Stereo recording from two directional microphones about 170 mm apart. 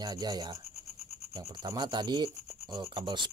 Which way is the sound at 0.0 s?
25° right (ahead or behind).